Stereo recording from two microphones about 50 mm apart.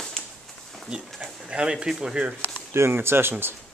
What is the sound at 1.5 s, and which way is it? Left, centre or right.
Speech, centre.